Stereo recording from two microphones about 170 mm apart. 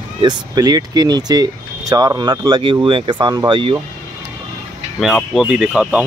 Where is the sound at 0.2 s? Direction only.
25° right (ahead or behind).